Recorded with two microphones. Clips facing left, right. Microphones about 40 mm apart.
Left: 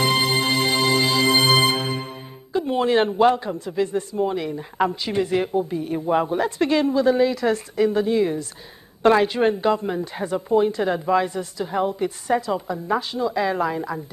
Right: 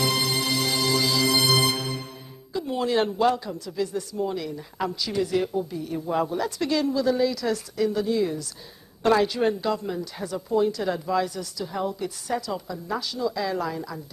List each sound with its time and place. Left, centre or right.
0.0 s music: left
9.0 s a woman's voice: left